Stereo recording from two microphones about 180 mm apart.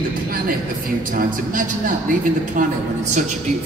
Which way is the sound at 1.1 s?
50° right (ahead or behind).